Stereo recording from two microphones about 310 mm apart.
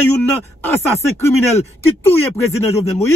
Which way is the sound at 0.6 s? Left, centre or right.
Centre.